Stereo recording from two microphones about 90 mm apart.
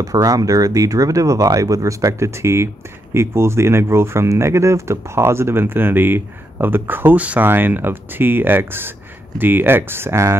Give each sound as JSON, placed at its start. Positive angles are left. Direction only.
{"t": 0.0, "sound": "speech", "side_deg": -40}